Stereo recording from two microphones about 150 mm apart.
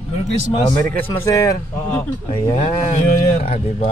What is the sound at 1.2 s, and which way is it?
Speech, 25° left (ahead or behind).